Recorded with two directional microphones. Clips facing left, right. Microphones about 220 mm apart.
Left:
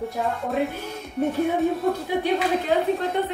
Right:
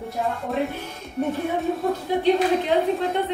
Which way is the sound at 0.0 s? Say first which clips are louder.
Left 1 dB; centre (ahead or behind).